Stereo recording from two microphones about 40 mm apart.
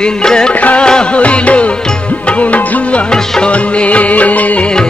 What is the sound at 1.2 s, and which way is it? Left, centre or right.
Music, left.